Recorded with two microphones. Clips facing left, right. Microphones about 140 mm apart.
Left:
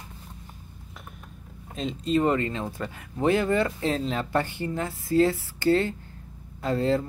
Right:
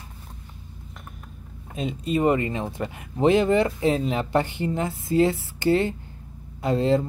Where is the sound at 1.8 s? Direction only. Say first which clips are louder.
Right 1 dB; 10° right (ahead or behind).